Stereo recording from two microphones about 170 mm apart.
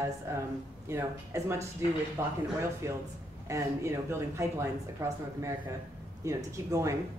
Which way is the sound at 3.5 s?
15° right (ahead or behind).